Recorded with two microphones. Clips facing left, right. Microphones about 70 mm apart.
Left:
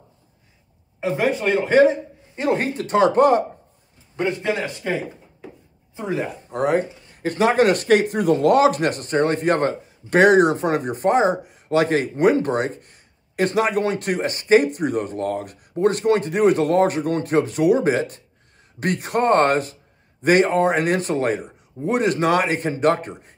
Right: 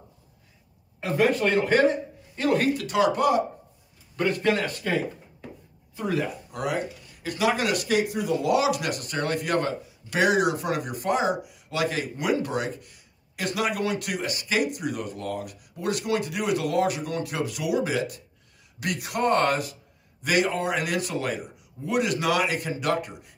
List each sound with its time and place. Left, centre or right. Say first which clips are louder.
1.0 s a man's voice: left 2 dB; centre; by 3.4 s left
4.2 s a man's voice: left 1 dB; centre; by 23.3 s left